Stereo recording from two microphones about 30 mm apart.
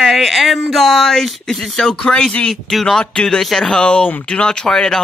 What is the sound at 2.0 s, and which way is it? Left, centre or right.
Speech, left.